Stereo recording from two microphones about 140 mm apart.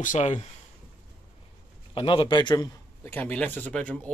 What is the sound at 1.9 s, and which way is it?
Speech, 40° left (ahead or behind).